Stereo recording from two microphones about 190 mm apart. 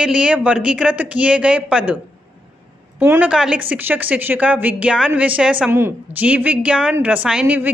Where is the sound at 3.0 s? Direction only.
10° right (ahead or behind).